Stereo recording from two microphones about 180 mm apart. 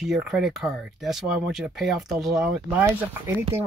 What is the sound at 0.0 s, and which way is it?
Speech, 5° right (ahead or behind).